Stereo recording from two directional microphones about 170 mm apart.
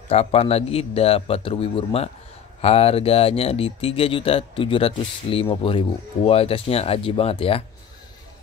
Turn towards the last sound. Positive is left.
turn(degrees=35)  # may be behind; listen again after turning